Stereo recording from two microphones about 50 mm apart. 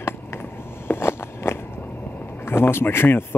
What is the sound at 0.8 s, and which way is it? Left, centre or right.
Walk, left.